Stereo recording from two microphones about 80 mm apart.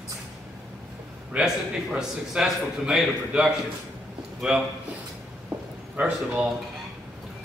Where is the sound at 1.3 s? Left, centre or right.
Centre.